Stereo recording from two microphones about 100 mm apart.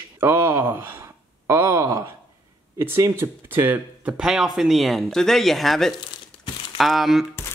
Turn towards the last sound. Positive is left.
turn(degrees=0)  # may be behind; listen again after turning